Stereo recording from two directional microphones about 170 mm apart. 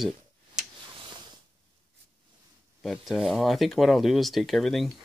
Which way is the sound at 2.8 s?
Centre (ahead or behind).